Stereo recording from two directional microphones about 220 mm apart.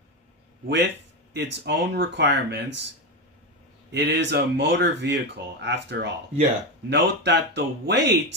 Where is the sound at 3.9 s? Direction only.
50° right (ahead or behind).